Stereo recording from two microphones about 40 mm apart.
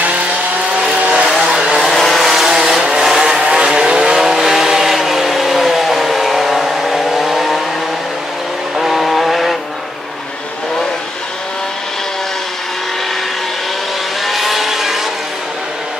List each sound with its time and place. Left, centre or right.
1.0 s vehicle: centre
1.8 s vehicle: centre
2.2 s vehicle: centre
8.7 s vehicle: centre
14.2 s vehicle: centre